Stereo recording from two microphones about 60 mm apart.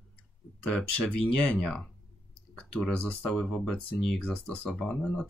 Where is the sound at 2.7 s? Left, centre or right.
Left.